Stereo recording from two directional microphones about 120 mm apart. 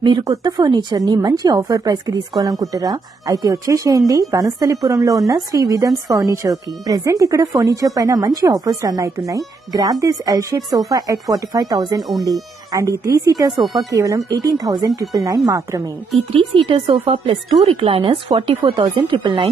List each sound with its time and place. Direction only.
0.3 s a woman's voice: 35° right (ahead or behind)
13.5 s speech: centre (ahead or behind)
13.8 s a woman's voice: 30° right (ahead or behind)
16.3 s a woman's voice: 45° right (ahead or behind)